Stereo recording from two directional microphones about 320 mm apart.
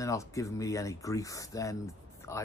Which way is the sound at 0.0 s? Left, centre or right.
Centre.